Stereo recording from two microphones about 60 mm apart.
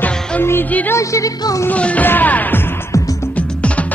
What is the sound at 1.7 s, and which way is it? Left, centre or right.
Music, left.